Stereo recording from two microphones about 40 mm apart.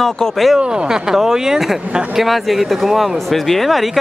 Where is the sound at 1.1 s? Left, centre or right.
Centre.